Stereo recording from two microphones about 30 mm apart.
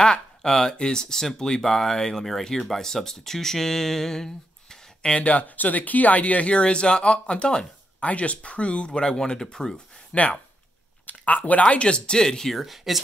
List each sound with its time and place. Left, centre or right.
0.0 s speech: left
1.6 s speech: centre
5.1 s speech: left
5.4 s speech: left
6.5 s speech: left
8.0 s speech: left
10.1 s speech: left
11.6 s speech: left
12.5 s speech: centre